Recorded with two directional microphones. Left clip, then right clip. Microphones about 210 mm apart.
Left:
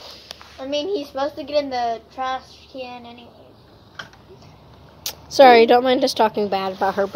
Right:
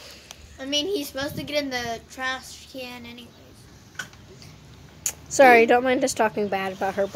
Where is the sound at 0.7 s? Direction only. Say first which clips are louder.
Left 2 dB; 15° right (ahead or behind).